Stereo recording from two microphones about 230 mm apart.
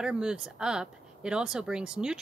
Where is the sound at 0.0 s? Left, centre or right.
Centre.